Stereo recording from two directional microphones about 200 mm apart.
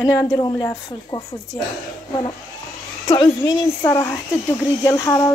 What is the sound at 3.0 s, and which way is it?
Speech, 20° left (ahead or behind).